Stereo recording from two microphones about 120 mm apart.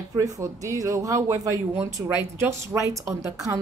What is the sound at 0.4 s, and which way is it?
Speech, 25° right (ahead or behind).